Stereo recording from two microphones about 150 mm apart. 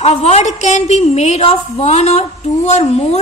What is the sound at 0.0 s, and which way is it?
A woman's voice, 45° left (ahead or behind).